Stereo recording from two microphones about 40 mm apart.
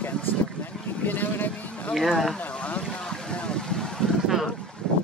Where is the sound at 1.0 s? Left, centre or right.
Left.